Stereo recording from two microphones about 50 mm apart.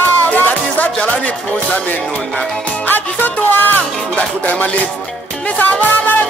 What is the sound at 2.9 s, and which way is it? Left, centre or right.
Speech, left.